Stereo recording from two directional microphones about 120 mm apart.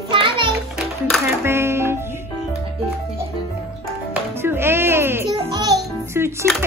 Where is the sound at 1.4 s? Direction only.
20° right (ahead or behind).